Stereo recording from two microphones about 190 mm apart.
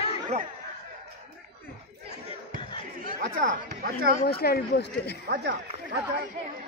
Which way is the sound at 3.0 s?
45° right (ahead or behind).